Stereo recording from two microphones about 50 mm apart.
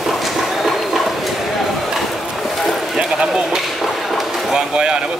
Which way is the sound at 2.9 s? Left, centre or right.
Centre.